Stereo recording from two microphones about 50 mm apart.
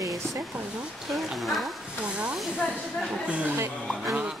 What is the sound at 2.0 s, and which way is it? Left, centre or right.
Speech, right.